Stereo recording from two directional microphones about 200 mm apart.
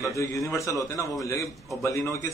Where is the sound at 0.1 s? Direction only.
15° left (ahead or behind).